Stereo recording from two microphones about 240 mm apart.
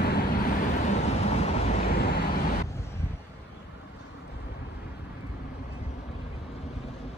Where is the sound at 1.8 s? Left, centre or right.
Left.